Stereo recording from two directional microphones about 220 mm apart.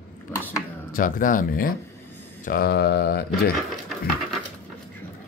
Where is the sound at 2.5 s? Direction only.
45° left (ahead or behind).